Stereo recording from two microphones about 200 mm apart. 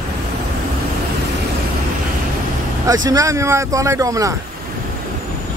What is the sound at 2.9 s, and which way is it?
Speech, 15° right (ahead or behind).